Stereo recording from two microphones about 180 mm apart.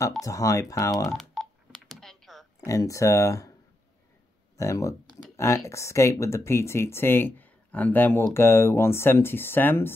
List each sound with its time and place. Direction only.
0.2 s speech: 20° left (ahead or behind)
0.9 s typing: centre (ahead or behind)
2.6 s speech: 20° left (ahead or behind)
4.6 s speech: 15° left (ahead or behind)
5.3 s a sound: 15° left (ahead or behind)
5.7 s speech: 15° left (ahead or behind)